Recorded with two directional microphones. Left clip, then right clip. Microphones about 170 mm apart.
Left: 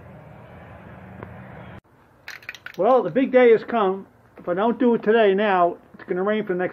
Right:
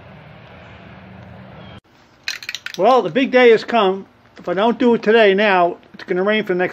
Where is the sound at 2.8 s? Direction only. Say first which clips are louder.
Right 4 dB; 30° right (ahead or behind).